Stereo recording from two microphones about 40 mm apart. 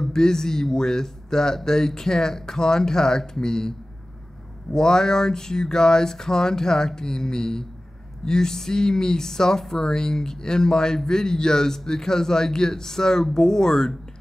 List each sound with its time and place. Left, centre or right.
0.1 s speech: centre
4.7 s speech: centre